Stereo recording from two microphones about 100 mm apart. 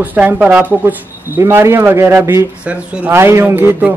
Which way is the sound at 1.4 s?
25° right (ahead or behind).